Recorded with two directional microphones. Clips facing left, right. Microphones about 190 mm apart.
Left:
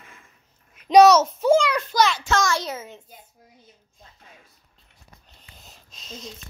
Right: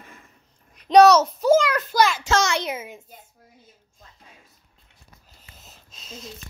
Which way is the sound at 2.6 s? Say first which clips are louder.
Right 2 dB; 10° right (ahead or behind).